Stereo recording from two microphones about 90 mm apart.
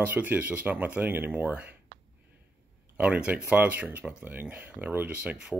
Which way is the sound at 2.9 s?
15° right (ahead or behind).